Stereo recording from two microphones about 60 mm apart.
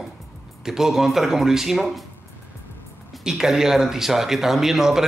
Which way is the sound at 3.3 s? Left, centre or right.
Centre.